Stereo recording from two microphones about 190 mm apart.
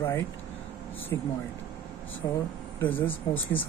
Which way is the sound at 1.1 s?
15° left (ahead or behind).